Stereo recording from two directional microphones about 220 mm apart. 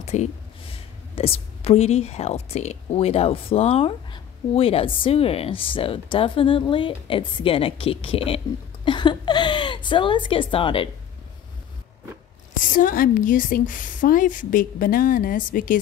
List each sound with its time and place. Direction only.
0.0 s a woman's voice: 30° left (ahead or behind)
8.8 s a sound: 20° left (ahead or behind)
12.5 s a woman's voice: 35° left (ahead or behind)